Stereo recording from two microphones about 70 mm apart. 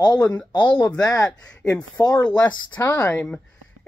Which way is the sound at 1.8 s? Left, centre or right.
Left.